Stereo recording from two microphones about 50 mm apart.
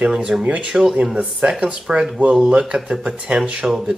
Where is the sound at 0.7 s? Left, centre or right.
Centre.